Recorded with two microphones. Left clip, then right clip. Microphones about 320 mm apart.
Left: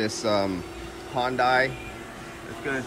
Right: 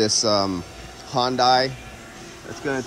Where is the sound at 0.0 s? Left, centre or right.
Centre.